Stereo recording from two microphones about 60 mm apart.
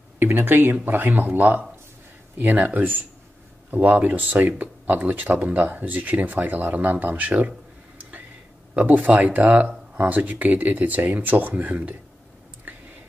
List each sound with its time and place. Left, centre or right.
0.2 s speech: right
8.7 s speech: right